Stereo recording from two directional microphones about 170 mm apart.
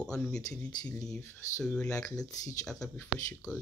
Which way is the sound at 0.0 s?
5° left (ahead or behind).